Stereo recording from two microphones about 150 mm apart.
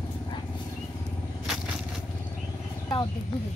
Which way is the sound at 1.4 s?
5° right (ahead or behind).